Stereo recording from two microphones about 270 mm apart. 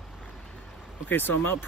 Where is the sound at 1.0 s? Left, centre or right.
Centre.